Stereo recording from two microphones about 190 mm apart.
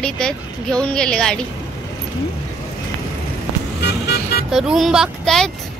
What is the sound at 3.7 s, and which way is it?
Vehicle, 60° left (ahead or behind).